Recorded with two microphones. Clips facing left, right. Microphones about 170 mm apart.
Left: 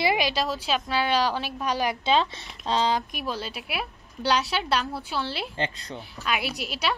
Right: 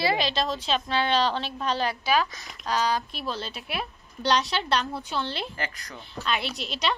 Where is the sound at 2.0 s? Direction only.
25° left (ahead or behind); by 5.4 s 5° left (ahead or behind).